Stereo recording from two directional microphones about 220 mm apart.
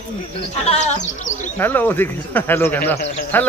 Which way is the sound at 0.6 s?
30° left (ahead or behind).